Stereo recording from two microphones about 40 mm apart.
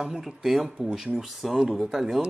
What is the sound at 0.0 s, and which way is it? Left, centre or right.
Speech, centre.